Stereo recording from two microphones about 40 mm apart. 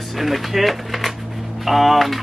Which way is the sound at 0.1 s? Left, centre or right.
Centre.